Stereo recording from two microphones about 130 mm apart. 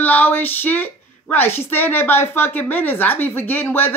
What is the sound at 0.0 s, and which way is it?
Speech, 15° left (ahead or behind).